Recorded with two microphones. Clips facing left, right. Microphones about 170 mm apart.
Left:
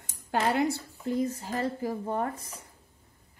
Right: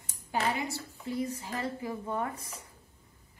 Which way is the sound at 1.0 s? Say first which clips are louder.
Left 5 dB; 45° left (ahead or behind).